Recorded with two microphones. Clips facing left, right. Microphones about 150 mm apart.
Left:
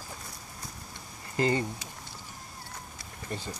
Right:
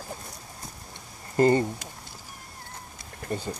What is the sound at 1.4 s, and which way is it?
Speech, 45° right (ahead or behind).